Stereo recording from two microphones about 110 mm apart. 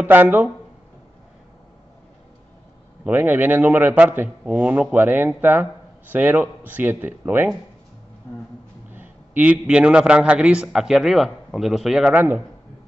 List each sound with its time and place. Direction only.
0.0 s a man's voice: 15° right (ahead or behind)
3.0 s a man's voice: 15° right (ahead or behind)
8.9 s a man's voice: 15° right (ahead or behind)
12.1 s a man's voice: 15° right (ahead or behind)